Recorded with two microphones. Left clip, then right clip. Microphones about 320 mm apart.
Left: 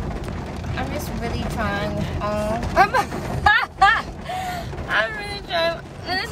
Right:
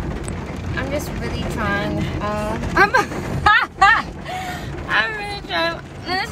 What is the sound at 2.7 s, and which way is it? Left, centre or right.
Speech, centre.